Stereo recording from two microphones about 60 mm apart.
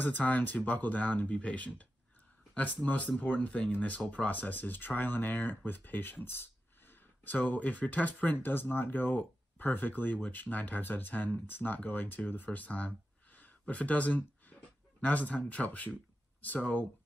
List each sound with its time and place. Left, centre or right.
0.0 s speech: left